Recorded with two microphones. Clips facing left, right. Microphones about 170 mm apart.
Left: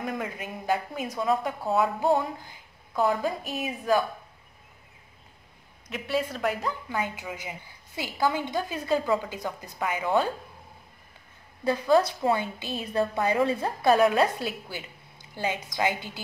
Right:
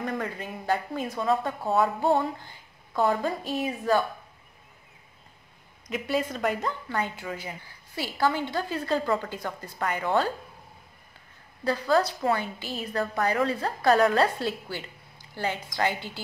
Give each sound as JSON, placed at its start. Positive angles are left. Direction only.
{"t": 0.0, "sound": "speech", "side_deg": 10}
{"t": 1.7, "sound": "music", "side_deg": 0}
{"t": 2.9, "sound": "speech", "side_deg": 5}
{"t": 5.9, "sound": "speech", "side_deg": 0}
{"t": 11.6, "sound": "a woman's voice", "side_deg": 15}